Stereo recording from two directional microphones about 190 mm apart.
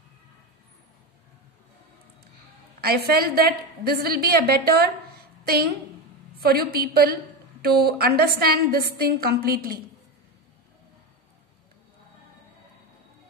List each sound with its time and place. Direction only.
2.8 s a woman's voice: 55° right (ahead or behind)
6.4 s a woman's voice: 55° right (ahead or behind)